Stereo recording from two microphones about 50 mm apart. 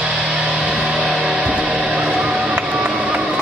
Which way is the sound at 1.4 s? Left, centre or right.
Right.